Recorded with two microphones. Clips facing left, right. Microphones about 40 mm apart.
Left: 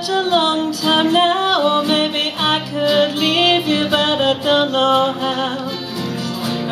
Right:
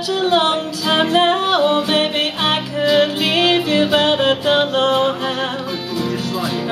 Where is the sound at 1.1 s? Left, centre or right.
Right.